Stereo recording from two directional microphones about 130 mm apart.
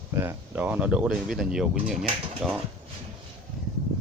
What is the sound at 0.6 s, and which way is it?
Speech, 10° right (ahead or behind).